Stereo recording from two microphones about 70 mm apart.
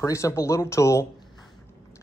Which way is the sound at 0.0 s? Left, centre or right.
Left.